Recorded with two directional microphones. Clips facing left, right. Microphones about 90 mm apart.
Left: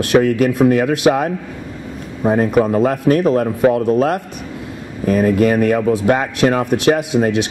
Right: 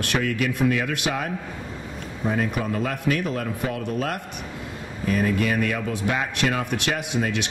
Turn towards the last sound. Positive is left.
turn(degrees=40)  # may be behind; listen again after turning